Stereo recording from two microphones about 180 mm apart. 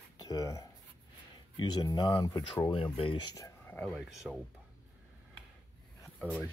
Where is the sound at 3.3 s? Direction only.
15° left (ahead or behind).